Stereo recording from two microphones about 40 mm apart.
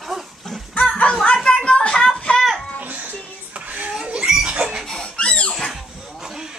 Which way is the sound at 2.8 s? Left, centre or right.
Right.